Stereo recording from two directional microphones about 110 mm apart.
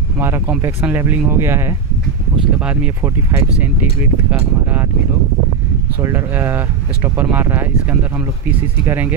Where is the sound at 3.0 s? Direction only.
25° right (ahead or behind).